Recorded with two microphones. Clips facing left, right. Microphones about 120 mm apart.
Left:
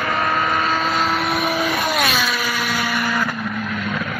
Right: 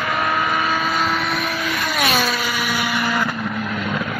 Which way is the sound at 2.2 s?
25° right (ahead or behind).